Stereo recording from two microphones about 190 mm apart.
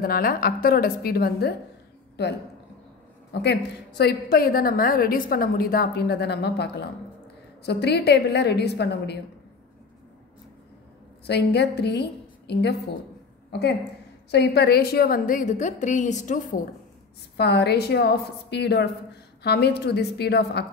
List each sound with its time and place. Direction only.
0.0 s a woman's voice: 50° left (ahead or behind)
3.3 s a woman's voice: 60° left (ahead or behind)
11.2 s a woman's voice: 60° left (ahead or behind); by 16.5 s 40° left (ahead or behind)
17.4 s a woman's voice: 60° left (ahead or behind)